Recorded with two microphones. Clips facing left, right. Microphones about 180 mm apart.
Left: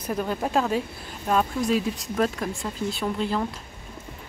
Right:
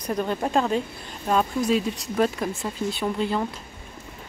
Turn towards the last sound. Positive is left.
turn(degrees=0)  # may be behind; listen again after turning